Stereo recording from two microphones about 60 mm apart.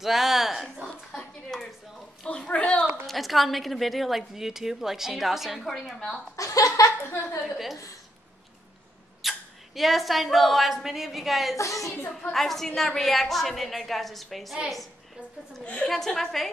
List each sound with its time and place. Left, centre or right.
0.0 s a sound: centre
2.2 s a sound: centre
3.1 s a woman's voice: centre
6.3 s chuckle: left
7.4 s a woman's voice: centre
9.2 s a sound: centre
9.8 s a woman's voice: centre
11.5 s a woman's voice: left
12.2 s a woman's voice: centre
15.6 s a woman's voice: centre
15.9 s a woman's voice: centre